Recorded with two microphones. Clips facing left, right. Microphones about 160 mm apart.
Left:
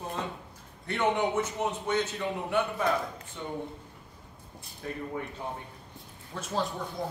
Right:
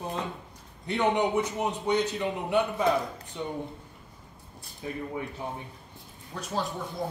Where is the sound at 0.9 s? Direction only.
15° right (ahead or behind).